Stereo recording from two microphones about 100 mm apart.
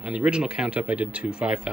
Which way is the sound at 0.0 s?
10° right (ahead or behind).